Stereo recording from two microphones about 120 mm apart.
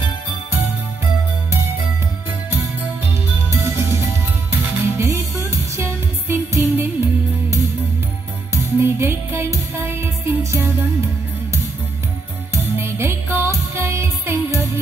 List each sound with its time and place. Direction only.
3.5 s music: 20° right (ahead or behind)
8.7 s music: 20° right (ahead or behind)
12.7 s music: 20° right (ahead or behind)